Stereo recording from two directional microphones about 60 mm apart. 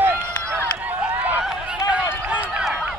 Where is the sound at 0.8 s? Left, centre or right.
Right.